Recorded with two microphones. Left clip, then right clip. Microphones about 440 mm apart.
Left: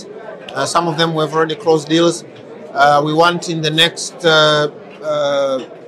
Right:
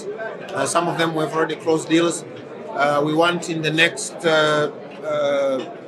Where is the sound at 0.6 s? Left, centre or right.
Left.